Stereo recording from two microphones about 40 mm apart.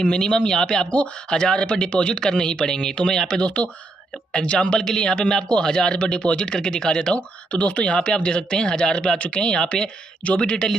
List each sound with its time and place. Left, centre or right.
0.0 s speech: left
7.2 s speech: left